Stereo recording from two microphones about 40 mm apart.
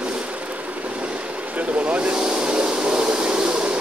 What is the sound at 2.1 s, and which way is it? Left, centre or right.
Vehicle, right.